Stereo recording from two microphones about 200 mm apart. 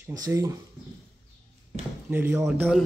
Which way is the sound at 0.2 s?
15° right (ahead or behind).